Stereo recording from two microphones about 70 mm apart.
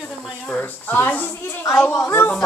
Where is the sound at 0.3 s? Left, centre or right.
Centre.